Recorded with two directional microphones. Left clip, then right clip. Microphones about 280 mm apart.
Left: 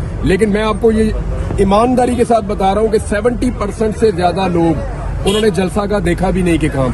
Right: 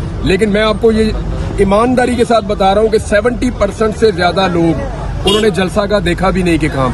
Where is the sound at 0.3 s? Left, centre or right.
Centre.